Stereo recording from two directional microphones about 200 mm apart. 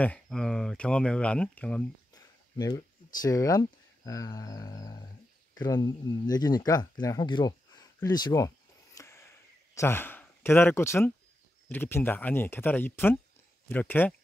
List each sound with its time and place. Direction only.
0.0 s speech: 5° left (ahead or behind)
2.1 s speech: 20° left (ahead or behind)